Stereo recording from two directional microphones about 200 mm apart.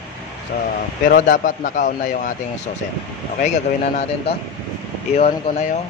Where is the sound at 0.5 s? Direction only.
40° left (ahead or behind).